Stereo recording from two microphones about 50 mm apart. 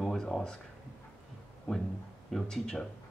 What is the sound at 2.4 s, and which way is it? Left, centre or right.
Speech, centre.